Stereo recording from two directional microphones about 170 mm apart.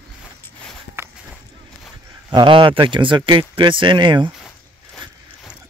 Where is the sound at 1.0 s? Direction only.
15° right (ahead or behind).